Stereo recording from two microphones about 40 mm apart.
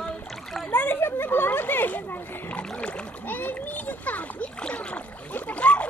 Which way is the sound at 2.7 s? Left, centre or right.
Left.